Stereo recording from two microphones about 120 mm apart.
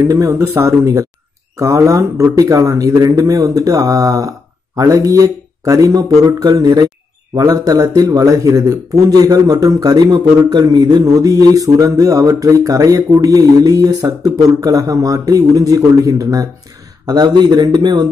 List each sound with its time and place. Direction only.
0.1 s a man's voice: 25° right (ahead or behind)